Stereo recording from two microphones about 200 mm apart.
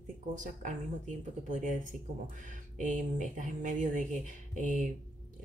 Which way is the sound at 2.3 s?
40° right (ahead or behind).